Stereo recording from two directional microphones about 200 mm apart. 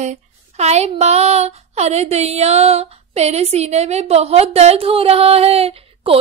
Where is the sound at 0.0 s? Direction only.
35° right (ahead or behind).